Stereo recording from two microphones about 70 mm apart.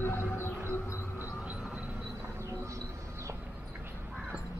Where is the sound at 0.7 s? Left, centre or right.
Left.